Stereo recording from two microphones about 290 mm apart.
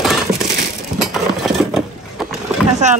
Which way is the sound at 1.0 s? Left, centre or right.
Centre.